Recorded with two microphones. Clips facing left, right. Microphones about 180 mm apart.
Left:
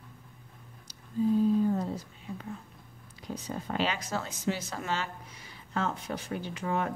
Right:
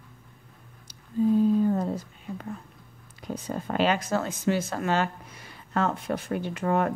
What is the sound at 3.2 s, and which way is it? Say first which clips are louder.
Speech: right 5 dB; 55° right (ahead or behind).